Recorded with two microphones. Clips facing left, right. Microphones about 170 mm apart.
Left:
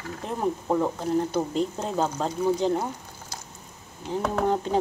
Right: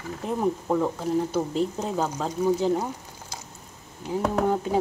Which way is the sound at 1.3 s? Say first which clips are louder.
Right 1 dB; 5° right (ahead or behind).